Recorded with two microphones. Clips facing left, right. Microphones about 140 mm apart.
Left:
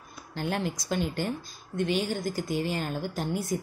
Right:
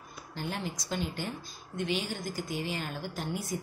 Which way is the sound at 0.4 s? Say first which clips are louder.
Left 6 dB; 55° left (ahead or behind).